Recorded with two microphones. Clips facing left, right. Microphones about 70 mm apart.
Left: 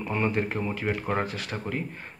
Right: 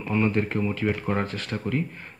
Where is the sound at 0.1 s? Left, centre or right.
Left.